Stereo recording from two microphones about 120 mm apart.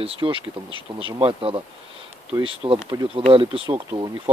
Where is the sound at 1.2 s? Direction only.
50° right (ahead or behind).